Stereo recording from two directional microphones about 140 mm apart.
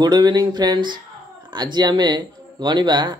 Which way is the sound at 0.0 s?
30° right (ahead or behind).